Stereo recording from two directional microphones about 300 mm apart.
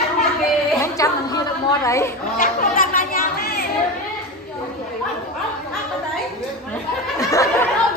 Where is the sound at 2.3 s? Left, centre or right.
Left.